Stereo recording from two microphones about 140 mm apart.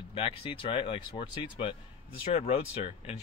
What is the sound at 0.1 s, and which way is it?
Speech, 40° left (ahead or behind).